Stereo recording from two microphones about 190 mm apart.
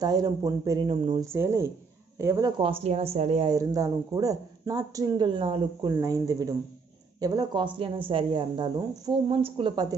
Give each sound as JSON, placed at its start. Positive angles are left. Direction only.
{"t": 0.0, "sound": "speech", "side_deg": -20}
{"t": 1.2, "sound": "a woman's voice", "side_deg": -15}
{"t": 3.4, "sound": "speech", "side_deg": -20}